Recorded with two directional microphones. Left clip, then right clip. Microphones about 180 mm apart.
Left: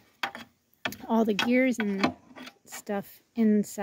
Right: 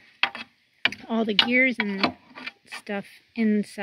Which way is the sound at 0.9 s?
5° left (ahead or behind).